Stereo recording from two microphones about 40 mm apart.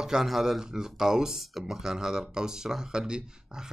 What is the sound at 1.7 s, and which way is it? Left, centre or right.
Speech, centre.